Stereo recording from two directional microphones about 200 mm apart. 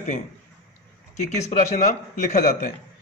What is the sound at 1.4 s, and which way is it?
Speech, 35° left (ahead or behind).